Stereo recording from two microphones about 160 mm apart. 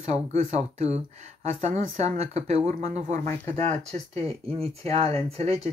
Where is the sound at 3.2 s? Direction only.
15° left (ahead or behind).